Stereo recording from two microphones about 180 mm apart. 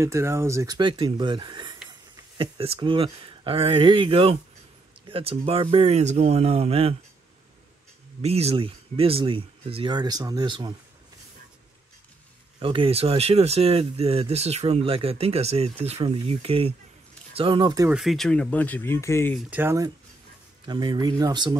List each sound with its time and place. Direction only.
0.0 s speech: 15° right (ahead or behind); by 7.0 s 35° right (ahead or behind)
8.2 s speech: 35° right (ahead or behind)
12.5 s speech: 30° right (ahead or behind)
17.8 s speech: centre (ahead or behind); by 19.3 s 15° left (ahead or behind)
19.5 s speech: 15° right (ahead or behind)
20.6 s speech: 25° right (ahead or behind)